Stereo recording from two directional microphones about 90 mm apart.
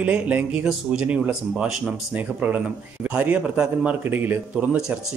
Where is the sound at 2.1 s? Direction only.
20° right (ahead or behind).